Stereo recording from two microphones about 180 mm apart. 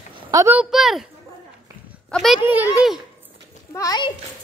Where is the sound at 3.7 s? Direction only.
20° left (ahead or behind).